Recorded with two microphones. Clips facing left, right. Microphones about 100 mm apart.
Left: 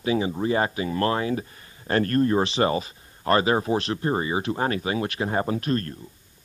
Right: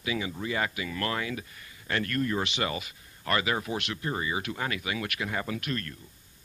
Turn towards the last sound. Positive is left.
turn(degrees=35)  # may be behind; listen again after turning